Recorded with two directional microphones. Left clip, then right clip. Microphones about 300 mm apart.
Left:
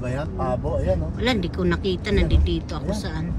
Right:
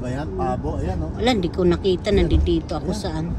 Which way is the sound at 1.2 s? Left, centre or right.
Centre.